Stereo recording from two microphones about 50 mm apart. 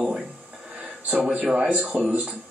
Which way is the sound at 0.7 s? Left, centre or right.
Right.